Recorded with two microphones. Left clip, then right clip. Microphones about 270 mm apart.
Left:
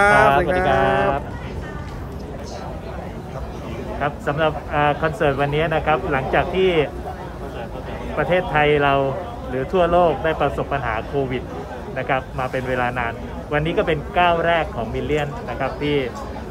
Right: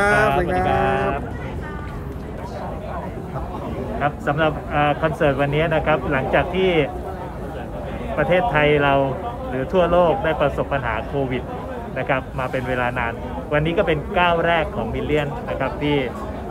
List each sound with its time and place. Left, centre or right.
0.0 s sheep: centre
0.7 s a sound: left
4.0 s a man's voice: centre
8.2 s a man's voice: centre